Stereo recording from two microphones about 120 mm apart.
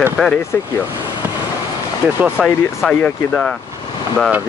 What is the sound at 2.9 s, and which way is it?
Speech, 10° left (ahead or behind).